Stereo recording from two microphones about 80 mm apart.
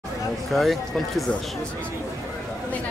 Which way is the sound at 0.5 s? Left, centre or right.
Centre.